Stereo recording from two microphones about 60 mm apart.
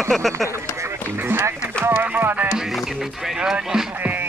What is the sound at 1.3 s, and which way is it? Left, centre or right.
Speech, right.